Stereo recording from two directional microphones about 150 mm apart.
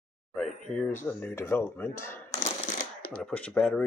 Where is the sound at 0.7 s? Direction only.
5° left (ahead or behind).